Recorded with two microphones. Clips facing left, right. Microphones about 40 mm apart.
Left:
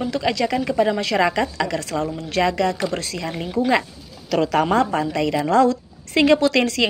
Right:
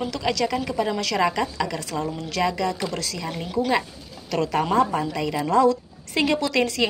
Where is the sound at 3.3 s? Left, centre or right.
Left.